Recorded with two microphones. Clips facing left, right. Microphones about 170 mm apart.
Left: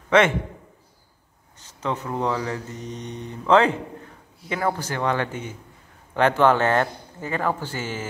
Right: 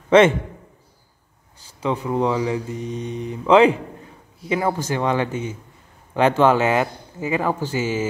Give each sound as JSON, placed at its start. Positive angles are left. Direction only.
{"t": 1.6, "sound": "a man's voice", "side_deg": -10}